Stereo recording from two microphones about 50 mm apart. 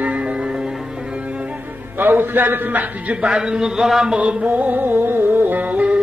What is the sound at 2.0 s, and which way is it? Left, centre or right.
A man's voice, right.